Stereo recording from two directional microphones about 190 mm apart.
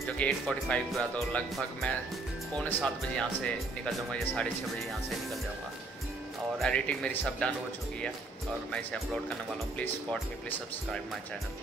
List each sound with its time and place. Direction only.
0.0 s speech: 5° left (ahead or behind)
6.6 s speech: 5° left (ahead or behind)
8.7 s speech: 5° left (ahead or behind)